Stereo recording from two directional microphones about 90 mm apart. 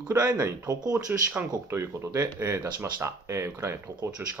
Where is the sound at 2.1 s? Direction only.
35° right (ahead or behind).